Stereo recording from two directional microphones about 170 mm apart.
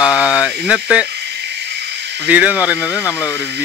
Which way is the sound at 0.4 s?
5° right (ahead or behind).